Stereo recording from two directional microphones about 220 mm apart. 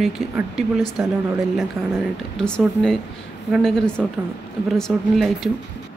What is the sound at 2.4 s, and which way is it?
Speech, 5° left (ahead or behind).